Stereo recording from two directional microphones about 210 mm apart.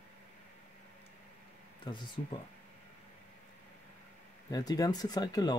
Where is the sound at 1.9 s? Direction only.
20° left (ahead or behind).